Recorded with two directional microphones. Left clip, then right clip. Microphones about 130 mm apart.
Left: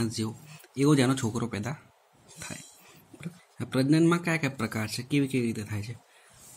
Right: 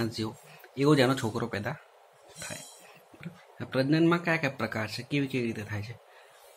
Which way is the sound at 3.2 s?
50° left (ahead or behind).